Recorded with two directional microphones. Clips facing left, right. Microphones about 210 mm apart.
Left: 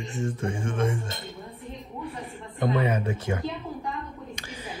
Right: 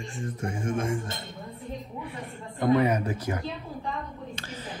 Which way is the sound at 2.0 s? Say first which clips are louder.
Left 2 dB; centre (ahead or behind).